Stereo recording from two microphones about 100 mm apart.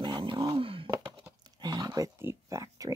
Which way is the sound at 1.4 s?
40° right (ahead or behind).